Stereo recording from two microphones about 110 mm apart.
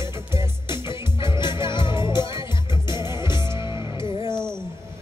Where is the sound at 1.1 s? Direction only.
45° left (ahead or behind).